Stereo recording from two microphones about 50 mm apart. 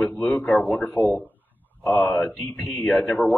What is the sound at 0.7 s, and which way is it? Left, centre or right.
Speech, left.